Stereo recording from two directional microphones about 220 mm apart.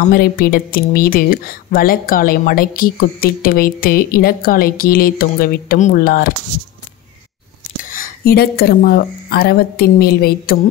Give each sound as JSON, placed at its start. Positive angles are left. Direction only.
{"t": 0.1, "sound": "speech", "side_deg": 45}
{"t": 7.9, "sound": "a woman's voice", "side_deg": 40}